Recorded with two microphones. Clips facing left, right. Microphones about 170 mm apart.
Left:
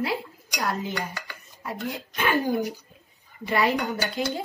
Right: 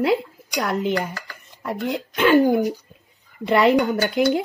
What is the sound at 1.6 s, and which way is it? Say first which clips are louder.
Speech: right 7 dB; 85° right.